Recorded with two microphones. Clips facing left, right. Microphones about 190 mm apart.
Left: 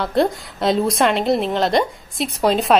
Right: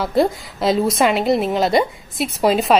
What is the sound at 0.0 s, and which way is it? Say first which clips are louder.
A woman's voice: right 1 dB; centre (ahead or behind).